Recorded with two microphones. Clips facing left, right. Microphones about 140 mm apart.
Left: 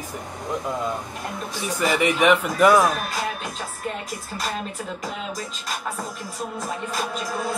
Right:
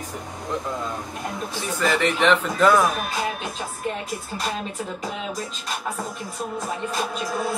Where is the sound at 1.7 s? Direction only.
15° left (ahead or behind).